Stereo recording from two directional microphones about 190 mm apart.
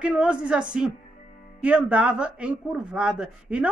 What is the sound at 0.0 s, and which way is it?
A woman's voice, 5° right (ahead or behind).